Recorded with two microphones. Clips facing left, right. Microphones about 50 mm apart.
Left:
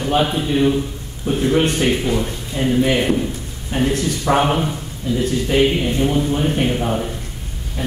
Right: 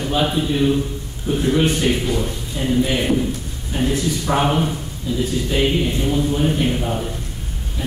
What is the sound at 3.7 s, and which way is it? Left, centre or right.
Speech, left.